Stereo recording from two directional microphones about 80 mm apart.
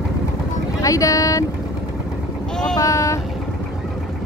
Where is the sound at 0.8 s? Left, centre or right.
Left.